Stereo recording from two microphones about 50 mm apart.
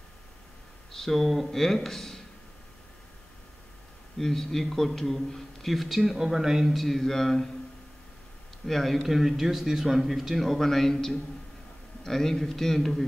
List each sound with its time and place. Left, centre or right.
0.9 s speech: centre
4.2 s speech: centre
6.7 s speech: centre
8.6 s speech: centre